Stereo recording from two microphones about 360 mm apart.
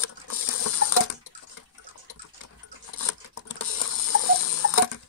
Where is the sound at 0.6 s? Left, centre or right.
Left.